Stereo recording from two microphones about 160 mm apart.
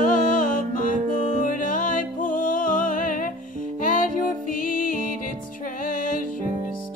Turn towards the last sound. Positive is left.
turn(degrees=60)  # may be behind; listen again after turning